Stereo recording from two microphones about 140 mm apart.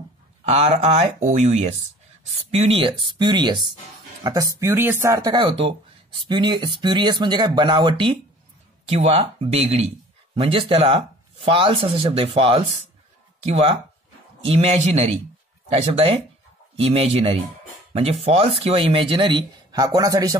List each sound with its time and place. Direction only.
0.5 s speech: 50° right (ahead or behind)
2.5 s speech: 40° right (ahead or behind)
8.8 s speech: 50° right (ahead or behind); by 20.3 s 25° right (ahead or behind)